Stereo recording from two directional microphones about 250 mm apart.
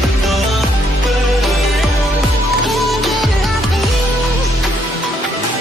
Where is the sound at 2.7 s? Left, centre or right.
Centre.